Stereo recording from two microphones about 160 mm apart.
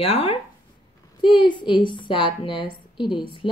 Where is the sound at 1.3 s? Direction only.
30° left (ahead or behind).